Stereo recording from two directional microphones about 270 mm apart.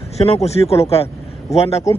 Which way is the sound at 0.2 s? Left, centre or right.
Left.